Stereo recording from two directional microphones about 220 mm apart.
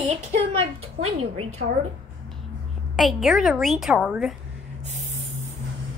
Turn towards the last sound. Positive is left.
turn(degrees=-30)  # may be behind; listen again after turning